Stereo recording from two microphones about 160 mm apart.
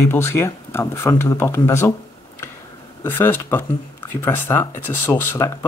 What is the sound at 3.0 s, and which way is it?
Speech, 15° left (ahead or behind).